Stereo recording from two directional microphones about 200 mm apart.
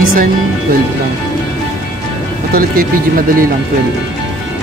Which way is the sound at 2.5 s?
45° right (ahead or behind).